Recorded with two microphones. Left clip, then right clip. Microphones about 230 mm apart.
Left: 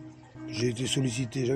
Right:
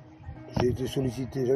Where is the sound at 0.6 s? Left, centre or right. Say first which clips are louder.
Even; left.